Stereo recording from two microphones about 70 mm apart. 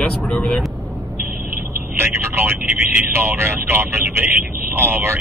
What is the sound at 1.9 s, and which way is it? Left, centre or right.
Speech, right.